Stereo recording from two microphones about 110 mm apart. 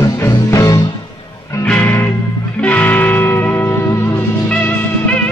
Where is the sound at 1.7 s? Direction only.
15° left (ahead or behind).